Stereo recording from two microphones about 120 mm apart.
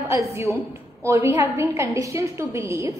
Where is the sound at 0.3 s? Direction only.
25° right (ahead or behind).